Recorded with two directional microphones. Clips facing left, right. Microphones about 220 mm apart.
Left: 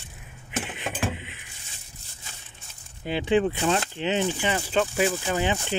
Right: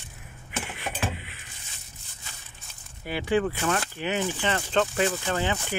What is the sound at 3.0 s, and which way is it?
Speech, 20° left (ahead or behind).